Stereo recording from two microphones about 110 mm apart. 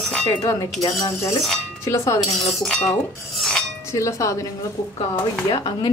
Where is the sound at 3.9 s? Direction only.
25° left (ahead or behind).